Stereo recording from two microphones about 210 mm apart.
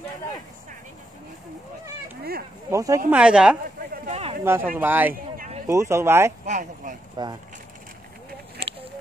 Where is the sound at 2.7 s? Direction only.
15° right (ahead or behind).